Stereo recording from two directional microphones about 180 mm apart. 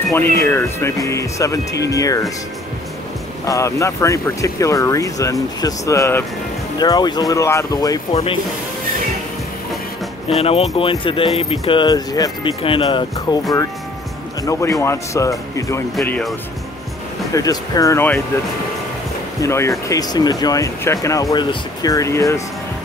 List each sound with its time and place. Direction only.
0.1 s speech: 15° left (ahead or behind)
3.4 s speech: 15° left (ahead or behind)
8.1 s speech: 35° left (ahead or behind)
10.4 s speech: 35° left (ahead or behind); by 15.8 s 15° left (ahead or behind)
16.0 s speech: centre (ahead or behind)
17.3 s speech: 20° left (ahead or behind)
19.4 s speech: 15° left (ahead or behind)